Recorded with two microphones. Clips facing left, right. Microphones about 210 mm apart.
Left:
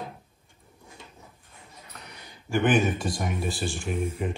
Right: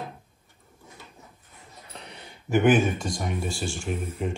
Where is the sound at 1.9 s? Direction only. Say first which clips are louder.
Right 4 dB; 30° right (ahead or behind).